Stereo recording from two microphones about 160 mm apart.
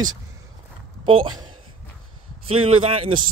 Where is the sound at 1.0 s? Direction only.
30° right (ahead or behind).